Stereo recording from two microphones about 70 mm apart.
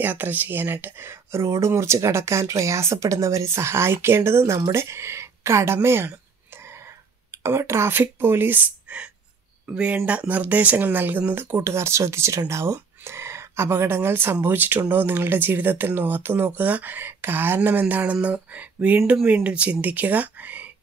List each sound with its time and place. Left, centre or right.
0.0 s speech: right
4.7 s a sound: right
7.9 s speech: right